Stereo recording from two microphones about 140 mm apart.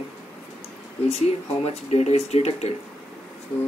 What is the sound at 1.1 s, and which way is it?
Speech, 50° left (ahead or behind).